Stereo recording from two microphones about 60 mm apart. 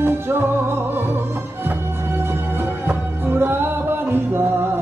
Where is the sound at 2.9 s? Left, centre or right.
Right.